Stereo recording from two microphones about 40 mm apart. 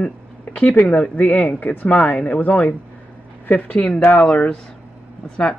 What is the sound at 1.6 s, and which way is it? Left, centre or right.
Speech, left.